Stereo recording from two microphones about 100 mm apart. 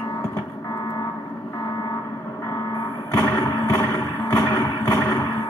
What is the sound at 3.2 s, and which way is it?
Music, 35° left (ahead or behind).